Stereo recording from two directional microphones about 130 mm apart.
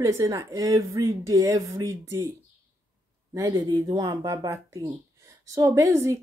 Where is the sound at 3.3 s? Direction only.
25° right (ahead or behind).